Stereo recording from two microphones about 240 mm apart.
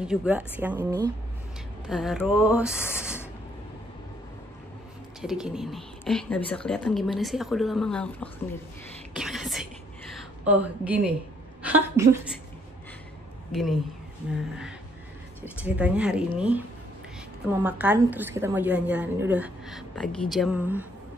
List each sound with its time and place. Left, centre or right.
0.0 s a woman's voice: centre
1.9 s a woman's voice: centre
3.0 s spray: centre
5.2 s a woman's voice: centre
13.5 s a woman's voice: centre
15.6 s a woman's voice: centre
17.6 s a woman's voice: centre